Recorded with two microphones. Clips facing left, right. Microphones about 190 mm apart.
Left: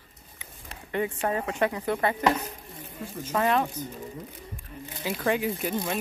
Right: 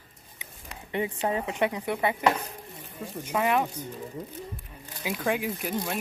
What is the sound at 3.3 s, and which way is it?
Speech, 10° right (ahead or behind).